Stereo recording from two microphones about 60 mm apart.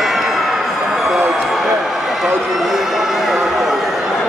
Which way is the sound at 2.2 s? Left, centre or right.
Centre.